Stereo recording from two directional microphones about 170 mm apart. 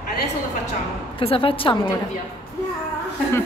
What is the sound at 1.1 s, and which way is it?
Speech, 30° left (ahead or behind).